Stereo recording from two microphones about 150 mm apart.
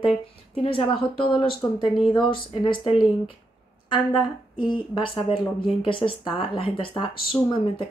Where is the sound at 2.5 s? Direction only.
35° left (ahead or behind).